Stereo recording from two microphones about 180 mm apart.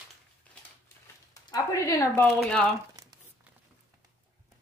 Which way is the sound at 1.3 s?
20° left (ahead or behind).